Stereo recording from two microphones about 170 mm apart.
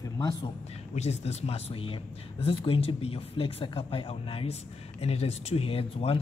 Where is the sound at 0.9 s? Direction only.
40° left (ahead or behind).